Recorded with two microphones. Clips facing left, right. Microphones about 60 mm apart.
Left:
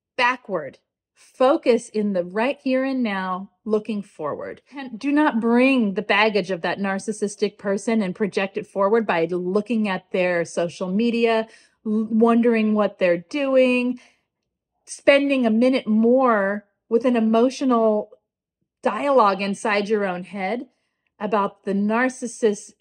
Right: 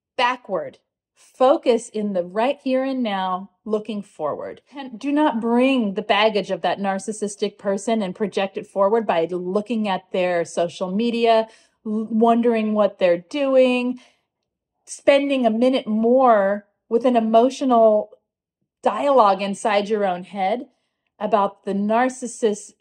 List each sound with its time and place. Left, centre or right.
0.1 s speech: left
0.7 s a sound: left
2.3 s a woman's voice: left
5.9 s a woman's voice: left
9.5 s a woman's voice: left
12.2 s a woman's voice: left
14.9 s a woman's voice: left